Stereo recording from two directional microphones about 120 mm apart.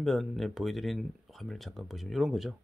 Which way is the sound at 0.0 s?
Centre (ahead or behind).